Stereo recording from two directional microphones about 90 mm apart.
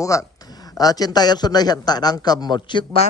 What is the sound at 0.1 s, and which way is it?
A man's voice, 35° left (ahead or behind).